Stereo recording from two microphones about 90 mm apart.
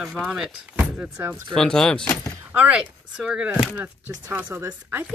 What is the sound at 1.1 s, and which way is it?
Speech, 30° right (ahead or behind).